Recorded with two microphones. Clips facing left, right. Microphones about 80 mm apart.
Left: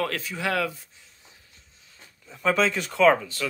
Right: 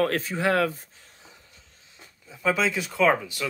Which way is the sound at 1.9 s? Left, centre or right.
Centre.